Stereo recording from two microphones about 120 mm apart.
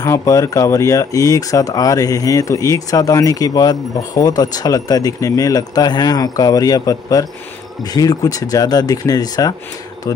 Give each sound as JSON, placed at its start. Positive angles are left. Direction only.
{"t": 0.0, "sound": "speech", "side_deg": 25}